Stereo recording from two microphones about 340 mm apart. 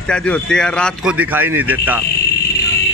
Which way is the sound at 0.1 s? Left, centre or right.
Centre.